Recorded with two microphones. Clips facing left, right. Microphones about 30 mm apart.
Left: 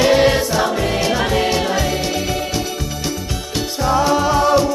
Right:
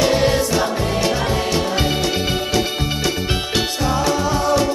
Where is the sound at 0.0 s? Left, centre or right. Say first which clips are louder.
Left 3 dB; left.